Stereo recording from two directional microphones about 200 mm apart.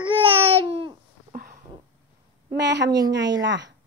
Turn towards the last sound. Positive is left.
turn(degrees=-65)  # may be behind; listen again after turning